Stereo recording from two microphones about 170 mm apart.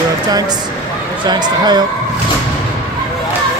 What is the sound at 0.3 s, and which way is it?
Speech, 20° right (ahead or behind).